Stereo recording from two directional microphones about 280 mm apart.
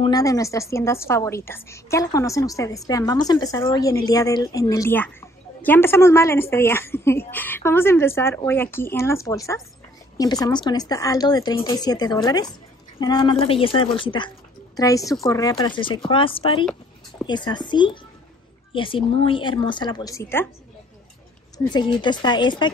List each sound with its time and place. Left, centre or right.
0.0 s a woman's voice: centre
21.6 s a woman's voice: centre